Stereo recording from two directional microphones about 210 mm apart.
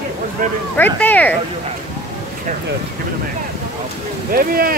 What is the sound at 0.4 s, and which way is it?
Speech, 40° right (ahead or behind).